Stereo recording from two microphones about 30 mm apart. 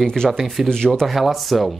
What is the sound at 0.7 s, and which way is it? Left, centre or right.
Speech, left.